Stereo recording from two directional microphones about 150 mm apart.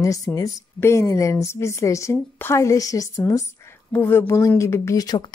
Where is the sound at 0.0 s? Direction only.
20° left (ahead or behind).